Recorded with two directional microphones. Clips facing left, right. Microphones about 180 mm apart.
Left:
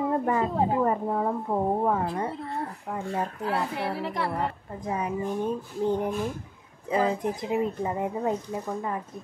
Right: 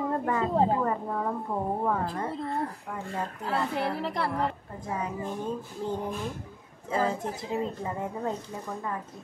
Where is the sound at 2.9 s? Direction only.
40° left (ahead or behind).